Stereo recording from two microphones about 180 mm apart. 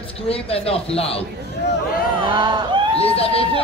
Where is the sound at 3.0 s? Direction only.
30° left (ahead or behind).